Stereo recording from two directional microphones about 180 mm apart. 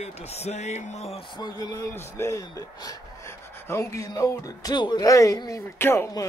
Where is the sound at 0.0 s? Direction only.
35° left (ahead or behind).